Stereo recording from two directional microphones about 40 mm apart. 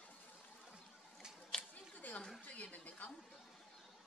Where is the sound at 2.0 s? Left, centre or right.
Left.